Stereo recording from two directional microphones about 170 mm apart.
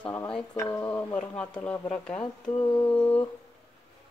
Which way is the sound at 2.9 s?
10° left (ahead or behind).